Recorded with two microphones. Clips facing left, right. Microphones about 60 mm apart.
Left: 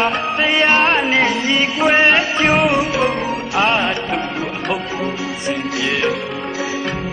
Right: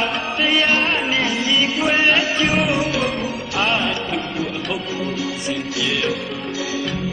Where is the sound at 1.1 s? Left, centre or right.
Left.